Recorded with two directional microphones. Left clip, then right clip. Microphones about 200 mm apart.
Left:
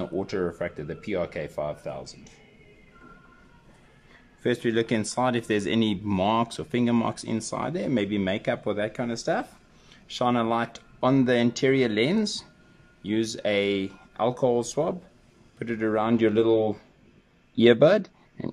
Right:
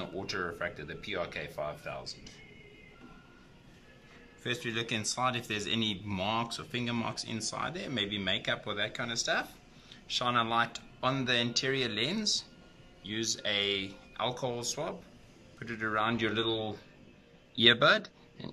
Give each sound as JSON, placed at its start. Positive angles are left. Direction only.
{"t": 0.0, "sound": "speech", "side_deg": 35}
{"t": 4.4, "sound": "speech", "side_deg": 40}